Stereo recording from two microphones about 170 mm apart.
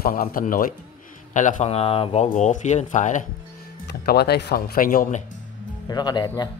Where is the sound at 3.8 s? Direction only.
70° left (ahead or behind); by 5.2 s 50° left (ahead or behind).